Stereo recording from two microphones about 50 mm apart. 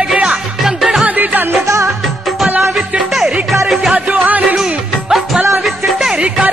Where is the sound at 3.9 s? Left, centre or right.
Right.